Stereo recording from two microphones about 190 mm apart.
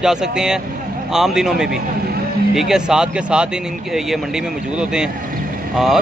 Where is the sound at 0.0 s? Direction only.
5° right (ahead or behind).